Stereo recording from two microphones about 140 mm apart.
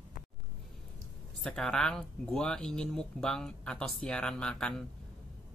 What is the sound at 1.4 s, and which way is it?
Speech, 5° left (ahead or behind).